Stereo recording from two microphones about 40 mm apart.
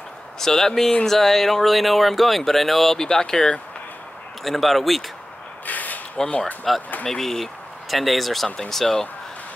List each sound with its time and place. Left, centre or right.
0.4 s speech: centre
3.0 s speech: centre
4.4 s speech: centre
5.7 s a sound: left
6.4 s speech: centre